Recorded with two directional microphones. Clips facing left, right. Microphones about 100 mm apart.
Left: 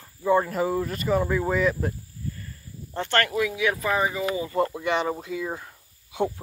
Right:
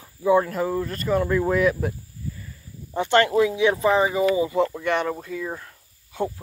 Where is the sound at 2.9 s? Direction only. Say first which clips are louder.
Right 6 dB; 15° right (ahead or behind).